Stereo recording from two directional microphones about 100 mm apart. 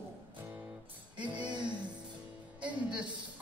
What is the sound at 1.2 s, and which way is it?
Music, 10° right (ahead or behind).